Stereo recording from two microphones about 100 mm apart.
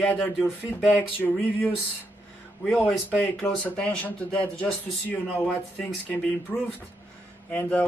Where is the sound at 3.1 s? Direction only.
15° left (ahead or behind).